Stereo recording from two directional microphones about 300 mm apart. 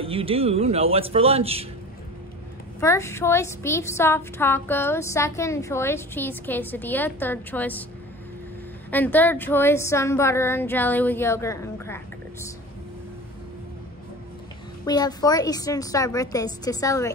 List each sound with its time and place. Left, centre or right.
0.0 s a man's voice: centre
2.8 s a woman's voice: centre
8.9 s a woman's voice: centre
14.9 s a woman's voice: centre